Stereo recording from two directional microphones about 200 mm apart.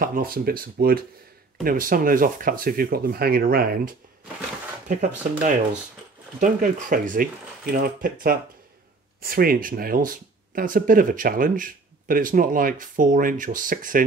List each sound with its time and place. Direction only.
0.0 s speech: 45° right (ahead or behind)